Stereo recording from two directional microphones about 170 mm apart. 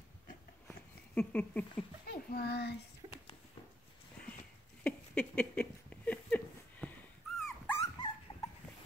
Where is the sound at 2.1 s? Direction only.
60° left (ahead or behind).